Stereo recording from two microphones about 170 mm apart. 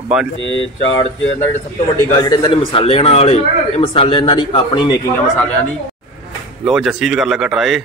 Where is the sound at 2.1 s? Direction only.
20° left (ahead or behind).